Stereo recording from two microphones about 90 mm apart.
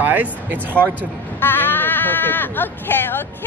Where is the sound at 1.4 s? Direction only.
25° left (ahead or behind).